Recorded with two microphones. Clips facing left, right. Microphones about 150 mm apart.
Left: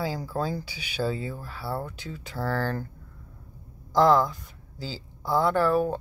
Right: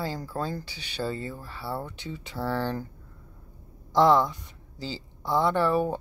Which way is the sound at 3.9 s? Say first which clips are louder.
Even; centre (ahead or behind).